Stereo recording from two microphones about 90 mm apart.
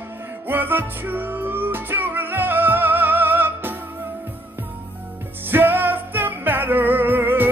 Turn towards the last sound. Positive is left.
turn(degrees=-25)  # may be behind; listen again after turning